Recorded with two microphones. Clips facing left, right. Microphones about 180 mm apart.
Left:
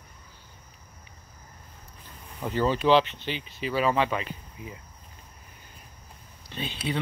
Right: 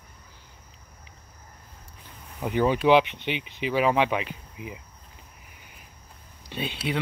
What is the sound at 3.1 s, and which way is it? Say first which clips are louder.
Speech: right 3 dB; 70° right (ahead or behind).